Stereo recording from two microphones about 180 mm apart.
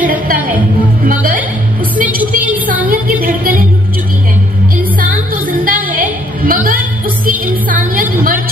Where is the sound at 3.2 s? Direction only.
55° right (ahead or behind).